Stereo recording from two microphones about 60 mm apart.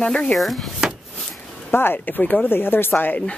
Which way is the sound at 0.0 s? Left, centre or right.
Centre.